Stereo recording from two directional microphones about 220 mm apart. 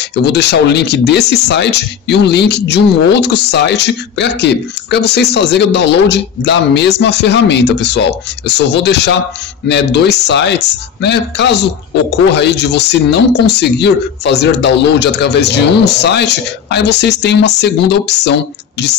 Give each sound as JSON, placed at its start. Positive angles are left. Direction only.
{"t": 0.1, "sound": "speech", "side_deg": 50}